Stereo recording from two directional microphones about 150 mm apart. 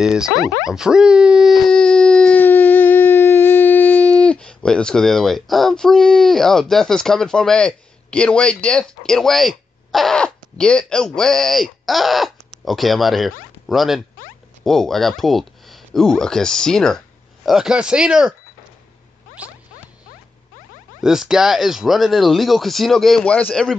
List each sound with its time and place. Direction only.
0.0 s speech: 5° right (ahead or behind)
21.0 s speech: 5° right (ahead or behind)